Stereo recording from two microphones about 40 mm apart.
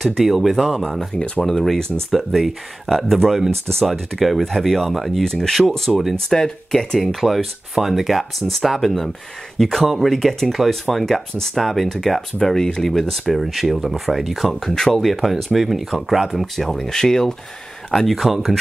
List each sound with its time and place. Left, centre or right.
0.0 s speech: centre
1.1 s speech: left
1.4 s speech: centre
5.2 s speech: centre
6.2 s speech: centre
7.0 s speech: centre
14.5 s speech: centre